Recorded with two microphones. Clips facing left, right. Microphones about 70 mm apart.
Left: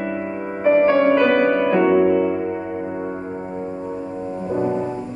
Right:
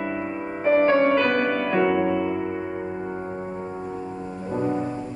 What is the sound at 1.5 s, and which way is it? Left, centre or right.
Music, centre.